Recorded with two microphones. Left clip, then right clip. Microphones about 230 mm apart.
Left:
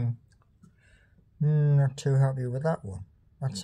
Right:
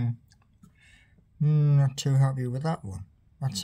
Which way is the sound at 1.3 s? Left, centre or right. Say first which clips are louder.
Even; right.